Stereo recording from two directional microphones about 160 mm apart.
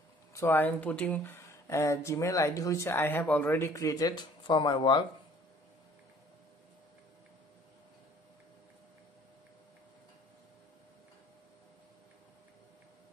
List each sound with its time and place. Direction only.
0.3 s speech: 15° left (ahead or behind)